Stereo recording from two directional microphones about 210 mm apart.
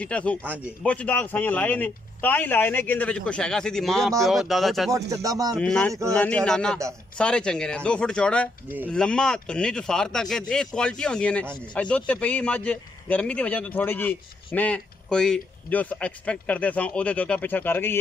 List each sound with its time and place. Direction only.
0.0 s a man's voice: 5° left (ahead or behind)
5.1 s music: 15° right (ahead or behind)
5.6 s a man's voice: 5° left (ahead or behind)